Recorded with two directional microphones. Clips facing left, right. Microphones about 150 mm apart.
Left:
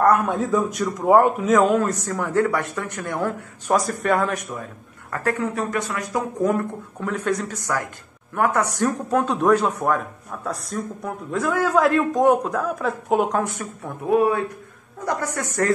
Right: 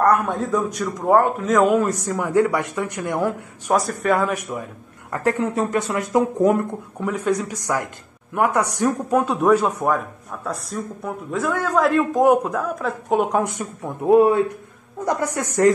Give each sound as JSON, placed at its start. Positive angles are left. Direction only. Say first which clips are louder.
{"t": 0.0, "sound": "a man's voice", "louder": "even", "side_deg": 0}
{"t": 3.7, "sound": "speech", "louder": "right 1 dB", "side_deg": 0}
{"t": 5.1, "sound": "speech", "louder": "right 3 dB", "side_deg": -20}
{"t": 7.1, "sound": "a man's voice", "louder": "right 2 dB", "side_deg": -10}
{"t": 13.3, "sound": "a man's voice", "louder": "right 2 dB", "side_deg": -15}